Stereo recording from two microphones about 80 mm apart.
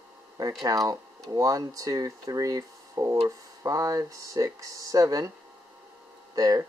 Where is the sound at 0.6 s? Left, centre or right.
Right.